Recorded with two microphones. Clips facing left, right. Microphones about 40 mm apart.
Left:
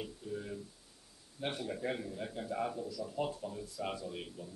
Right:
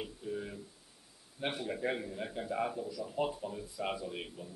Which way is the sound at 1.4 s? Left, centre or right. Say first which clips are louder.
Right 2 dB; centre.